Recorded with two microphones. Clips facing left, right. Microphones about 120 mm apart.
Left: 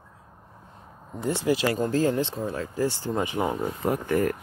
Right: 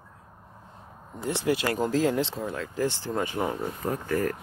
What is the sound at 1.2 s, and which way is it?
Speech, 60° right (ahead or behind).